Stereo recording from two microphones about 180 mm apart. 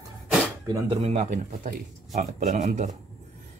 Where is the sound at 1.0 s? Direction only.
40° right (ahead or behind).